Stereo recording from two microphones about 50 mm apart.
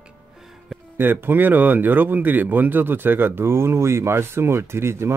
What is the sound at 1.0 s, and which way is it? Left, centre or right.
Speech, right.